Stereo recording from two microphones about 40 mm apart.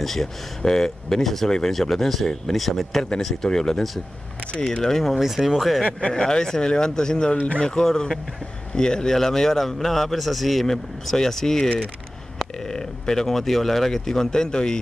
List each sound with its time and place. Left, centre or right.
0.0 s speech: centre
3.4 s speech: centre
4.9 s speech: centre
5.2 s speech: centre
5.9 s speech: left
6.2 s speech: centre
7.3 s speech: left
7.6 s speech: centre